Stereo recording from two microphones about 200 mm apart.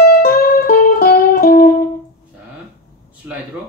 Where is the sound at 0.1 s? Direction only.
45° left (ahead or behind).